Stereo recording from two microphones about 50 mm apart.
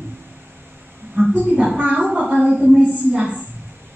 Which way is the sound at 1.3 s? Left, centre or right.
Right.